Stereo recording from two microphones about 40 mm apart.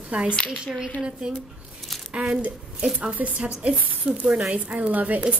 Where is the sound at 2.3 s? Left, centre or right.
Right.